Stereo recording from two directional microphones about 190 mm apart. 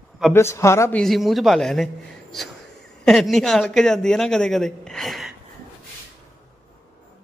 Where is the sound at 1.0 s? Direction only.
Centre (ahead or behind).